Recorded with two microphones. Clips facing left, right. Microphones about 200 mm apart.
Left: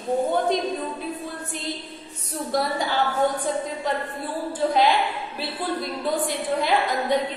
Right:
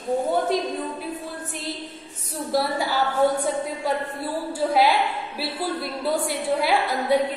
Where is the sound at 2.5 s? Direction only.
5° right (ahead or behind).